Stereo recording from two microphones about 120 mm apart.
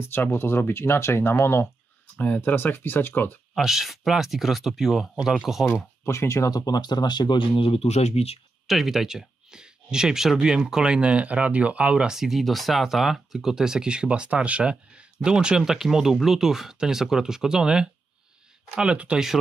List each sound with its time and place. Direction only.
0.0 s speech: 20° left (ahead or behind)
3.5 s speech: centre (ahead or behind)
6.0 s speech: 25° left (ahead or behind); by 8.4 s 60° left (ahead or behind)
8.6 s speech: centre (ahead or behind)